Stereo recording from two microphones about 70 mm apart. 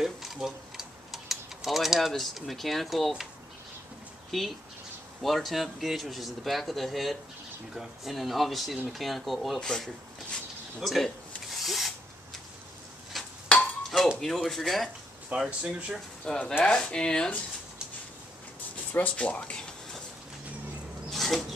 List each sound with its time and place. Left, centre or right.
0.0 s typing: centre
4.3 s speech: centre
10.8 s a sound: centre
13.5 s ping: centre
13.8 s speech: centre
15.3 s speech: centre
16.3 s speech: centre
18.9 s speech: centre
21.1 s a sound: centre